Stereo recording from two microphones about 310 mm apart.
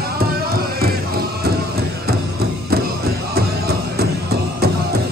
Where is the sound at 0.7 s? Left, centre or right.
Right.